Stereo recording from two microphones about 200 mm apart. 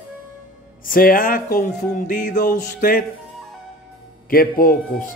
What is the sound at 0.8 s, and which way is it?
Speech, 45° left (ahead or behind).